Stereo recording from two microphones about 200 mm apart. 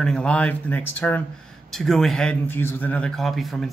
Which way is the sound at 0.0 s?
5° left (ahead or behind).